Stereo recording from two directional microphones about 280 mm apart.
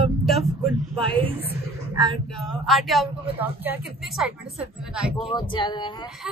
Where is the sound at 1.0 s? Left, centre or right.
Centre.